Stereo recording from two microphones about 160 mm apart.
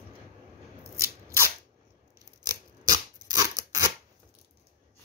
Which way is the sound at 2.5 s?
25° right (ahead or behind).